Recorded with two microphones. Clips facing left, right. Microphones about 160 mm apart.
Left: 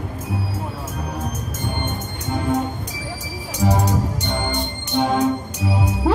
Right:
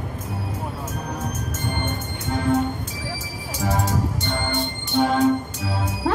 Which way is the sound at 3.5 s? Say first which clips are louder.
Left 4 dB; 20° left (ahead or behind).